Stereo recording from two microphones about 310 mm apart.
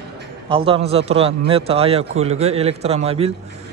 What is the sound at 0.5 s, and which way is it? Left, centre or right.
A man's voice, centre.